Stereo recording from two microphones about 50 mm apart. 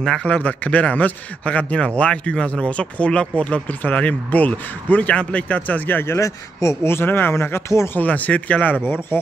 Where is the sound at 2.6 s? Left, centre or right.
Left.